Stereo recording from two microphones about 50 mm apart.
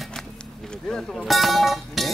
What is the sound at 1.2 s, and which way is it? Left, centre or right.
Music, centre.